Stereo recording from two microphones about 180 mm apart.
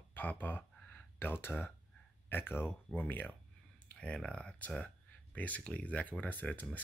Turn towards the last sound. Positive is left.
turn(degrees=10)  # may be behind; listen again after turning